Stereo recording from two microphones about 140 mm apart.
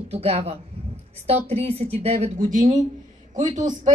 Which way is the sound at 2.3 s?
65° right (ahead or behind).